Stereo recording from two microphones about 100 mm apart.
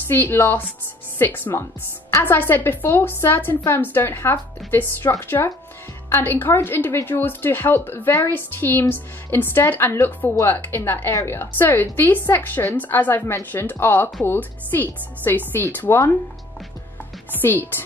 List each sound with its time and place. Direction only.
0.1 s a woman's voice: 20° left (ahead or behind)
5.4 s speech: 40° left (ahead or behind)
6.0 s a woman's voice: 20° left (ahead or behind)
17.4 s a woman's voice: 20° left (ahead or behind)